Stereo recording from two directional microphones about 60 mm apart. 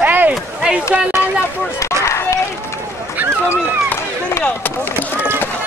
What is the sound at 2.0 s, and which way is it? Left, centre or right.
Run, left.